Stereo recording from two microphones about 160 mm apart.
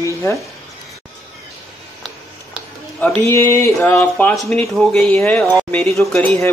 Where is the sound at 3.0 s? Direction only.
15° left (ahead or behind).